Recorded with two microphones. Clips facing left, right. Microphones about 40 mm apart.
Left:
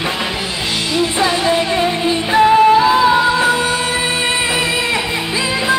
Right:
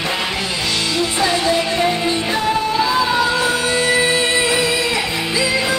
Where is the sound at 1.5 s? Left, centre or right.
Left.